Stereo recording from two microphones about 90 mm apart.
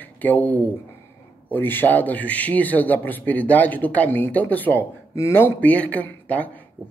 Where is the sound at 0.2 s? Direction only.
20° left (ahead or behind).